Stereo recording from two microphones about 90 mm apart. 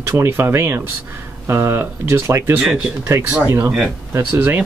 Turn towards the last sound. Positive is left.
turn(degrees=-20)  # may be behind; listen again after turning